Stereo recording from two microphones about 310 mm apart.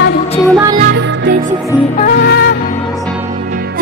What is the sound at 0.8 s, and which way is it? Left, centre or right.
Music, right.